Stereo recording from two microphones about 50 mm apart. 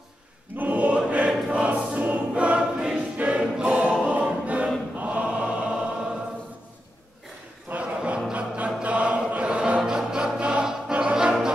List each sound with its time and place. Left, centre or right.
0.6 s choir: right
5.4 s choir: centre
7.7 s a sound: right
8.3 s music: right
8.8 s choir: right